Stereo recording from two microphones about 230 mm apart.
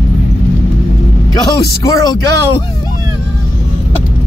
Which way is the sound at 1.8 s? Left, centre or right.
Centre.